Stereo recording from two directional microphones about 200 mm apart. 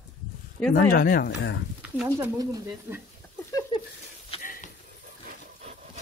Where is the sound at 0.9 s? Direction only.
45° left (ahead or behind).